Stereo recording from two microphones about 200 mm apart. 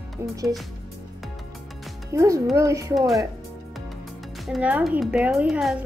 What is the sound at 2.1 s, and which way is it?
Speech, 15° right (ahead or behind).